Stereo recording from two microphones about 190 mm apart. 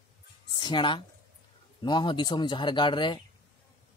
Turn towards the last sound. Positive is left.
turn(degrees=25)  # may be behind; listen again after turning